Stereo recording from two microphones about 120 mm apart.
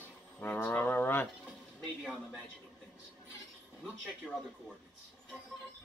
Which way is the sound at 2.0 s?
Centre (ahead or behind).